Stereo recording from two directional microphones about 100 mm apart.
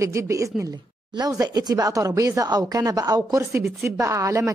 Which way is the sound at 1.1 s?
40° right (ahead or behind).